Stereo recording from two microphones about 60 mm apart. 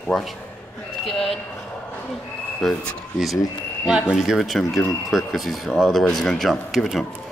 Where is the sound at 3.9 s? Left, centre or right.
Centre.